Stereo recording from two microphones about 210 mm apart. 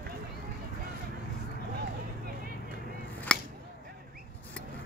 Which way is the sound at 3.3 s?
5° left (ahead or behind).